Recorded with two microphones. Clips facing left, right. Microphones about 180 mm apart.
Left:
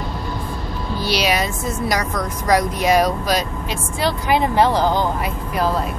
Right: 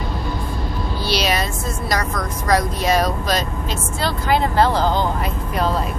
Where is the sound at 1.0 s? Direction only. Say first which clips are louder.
Left 1 dB; 15° left (ahead or behind).